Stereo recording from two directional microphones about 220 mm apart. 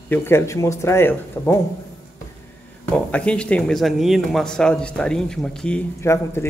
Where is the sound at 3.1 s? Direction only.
5° left (ahead or behind).